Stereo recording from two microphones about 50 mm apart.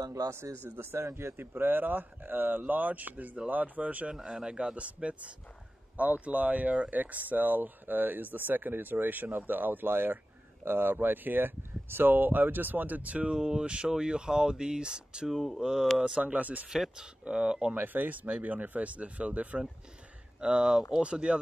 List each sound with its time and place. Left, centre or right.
0.1 s speech: right
1.3 s speech: right
4.1 s speech: centre
13.4 s speech: centre
15.2 s speech: centre
15.6 s speech: centre
16.2 s speech: right
16.6 s speech: centre
17.7 s speech: right